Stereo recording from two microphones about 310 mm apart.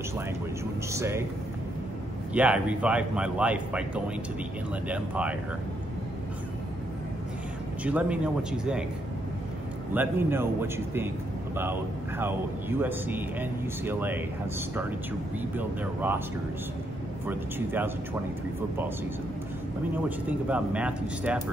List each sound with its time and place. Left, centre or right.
0.9 s speech: centre
2.3 s speech: centre
7.8 s speech: centre
9.9 s speech: centre
15.5 s speech: centre
17.3 s speech: centre
20.1 s speech: centre